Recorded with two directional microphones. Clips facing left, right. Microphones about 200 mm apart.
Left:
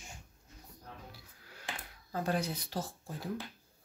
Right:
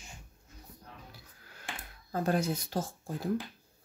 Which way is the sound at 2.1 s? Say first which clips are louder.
Right 4 dB; 45° right (ahead or behind).